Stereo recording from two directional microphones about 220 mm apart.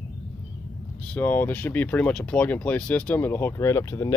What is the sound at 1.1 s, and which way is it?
Speech, 10° left (ahead or behind).